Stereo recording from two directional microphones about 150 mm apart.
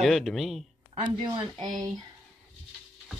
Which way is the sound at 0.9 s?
30° right (ahead or behind).